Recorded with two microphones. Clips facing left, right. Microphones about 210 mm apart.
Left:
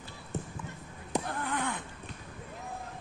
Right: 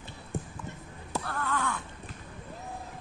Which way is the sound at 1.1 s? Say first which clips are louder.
Even; 15° left (ahead or behind).